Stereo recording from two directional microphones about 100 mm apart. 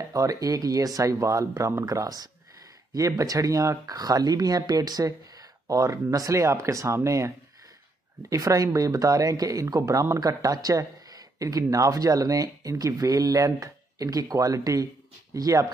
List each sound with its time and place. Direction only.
0.1 s speech: 35° right (ahead or behind)